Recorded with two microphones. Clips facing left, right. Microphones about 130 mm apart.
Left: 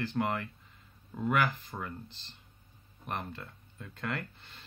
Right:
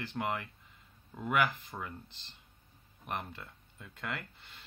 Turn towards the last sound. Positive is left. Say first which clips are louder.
# left 4 dB
turn(degrees=-15)  # may be behind; listen again after turning